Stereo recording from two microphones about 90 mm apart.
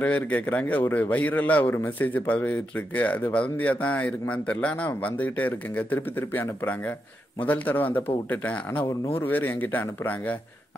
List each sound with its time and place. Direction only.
0.0 s a man's voice: 15° left (ahead or behind)